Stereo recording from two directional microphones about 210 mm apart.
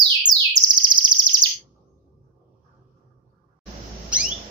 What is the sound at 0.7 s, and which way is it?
Chirp, 20° right (ahead or behind).